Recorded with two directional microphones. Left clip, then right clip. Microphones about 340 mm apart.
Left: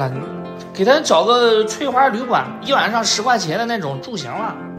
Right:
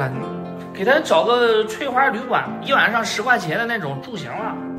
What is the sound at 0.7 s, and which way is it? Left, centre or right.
Speech, centre.